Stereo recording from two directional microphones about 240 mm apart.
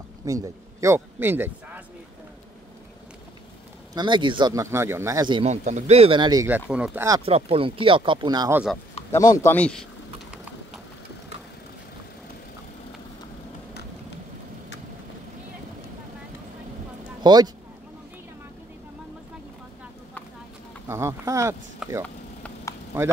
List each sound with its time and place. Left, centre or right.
0.2 s speech: centre
3.9 s speech: centre
7.2 s speech: right; by 8.7 s centre
9.1 s speech: centre
17.2 s speech: centre
20.9 s speech: centre
21.8 s speech: centre